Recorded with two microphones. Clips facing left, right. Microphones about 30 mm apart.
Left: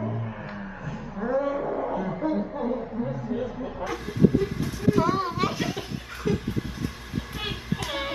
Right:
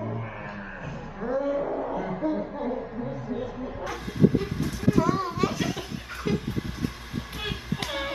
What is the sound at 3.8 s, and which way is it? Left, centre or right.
Chuckle, centre.